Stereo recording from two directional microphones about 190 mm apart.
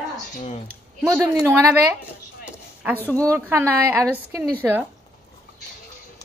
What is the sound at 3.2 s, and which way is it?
A woman's voice, 15° right (ahead or behind).